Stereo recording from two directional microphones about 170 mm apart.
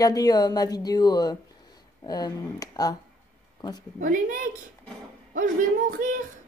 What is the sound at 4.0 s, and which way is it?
Speech, 50° right (ahead or behind).